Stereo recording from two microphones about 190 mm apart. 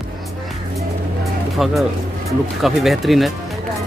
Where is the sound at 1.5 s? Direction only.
Centre (ahead or behind).